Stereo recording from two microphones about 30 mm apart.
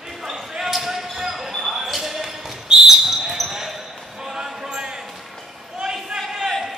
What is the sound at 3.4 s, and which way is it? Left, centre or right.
Basketball bounce, centre.